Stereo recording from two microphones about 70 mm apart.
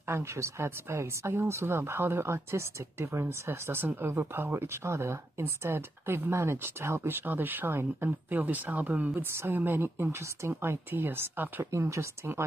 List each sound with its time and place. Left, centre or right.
0.1 s speech: right
11.7 s speech: right